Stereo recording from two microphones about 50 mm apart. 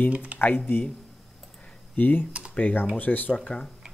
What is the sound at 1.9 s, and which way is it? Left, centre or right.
Speech, left.